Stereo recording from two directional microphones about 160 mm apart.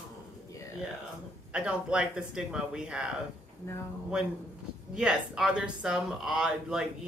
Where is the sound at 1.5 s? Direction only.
5° right (ahead or behind).